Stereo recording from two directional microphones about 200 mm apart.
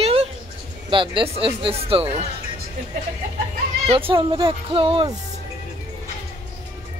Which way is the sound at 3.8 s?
25° right (ahead or behind).